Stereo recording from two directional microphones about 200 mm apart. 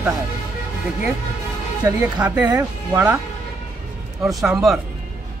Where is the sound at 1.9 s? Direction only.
10° right (ahead or behind).